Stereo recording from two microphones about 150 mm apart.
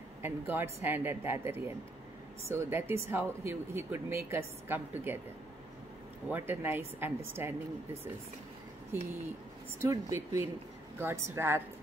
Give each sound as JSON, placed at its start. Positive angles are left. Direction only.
{"t": 0.2, "sound": "speech", "side_deg": -15}
{"t": 6.2, "sound": "speech", "side_deg": -15}
{"t": 9.8, "sound": "speech", "side_deg": -20}